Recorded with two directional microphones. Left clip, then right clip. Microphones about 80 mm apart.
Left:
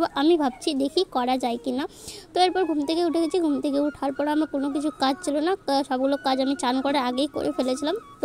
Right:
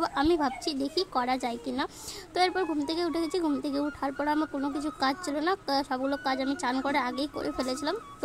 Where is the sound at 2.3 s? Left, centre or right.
Left.